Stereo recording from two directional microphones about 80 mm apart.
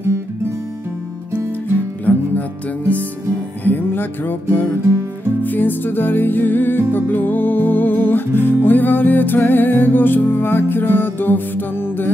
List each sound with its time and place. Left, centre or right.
2.1 s music: centre
3.6 s music: left